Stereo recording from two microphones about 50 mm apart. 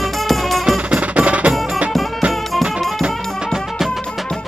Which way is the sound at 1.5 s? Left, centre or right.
Centre.